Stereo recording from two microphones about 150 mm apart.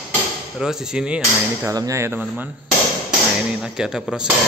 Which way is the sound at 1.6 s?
20° right (ahead or behind).